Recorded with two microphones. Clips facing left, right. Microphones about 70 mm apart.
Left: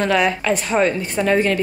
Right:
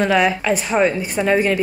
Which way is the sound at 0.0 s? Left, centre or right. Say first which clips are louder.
Right 1 dB; centre.